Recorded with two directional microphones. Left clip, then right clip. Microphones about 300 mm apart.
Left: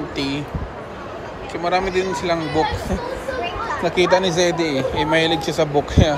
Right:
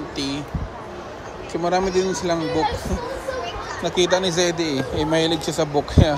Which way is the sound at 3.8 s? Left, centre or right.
Right.